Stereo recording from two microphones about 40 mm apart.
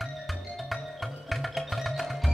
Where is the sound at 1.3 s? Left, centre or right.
Centre.